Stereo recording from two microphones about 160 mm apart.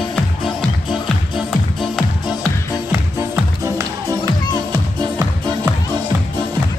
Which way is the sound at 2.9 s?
15° right (ahead or behind).